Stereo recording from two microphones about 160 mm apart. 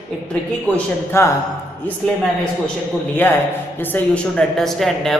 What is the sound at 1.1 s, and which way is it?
Speech, 15° left (ahead or behind).